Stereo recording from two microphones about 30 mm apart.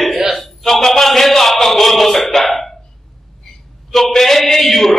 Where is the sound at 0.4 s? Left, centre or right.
Centre.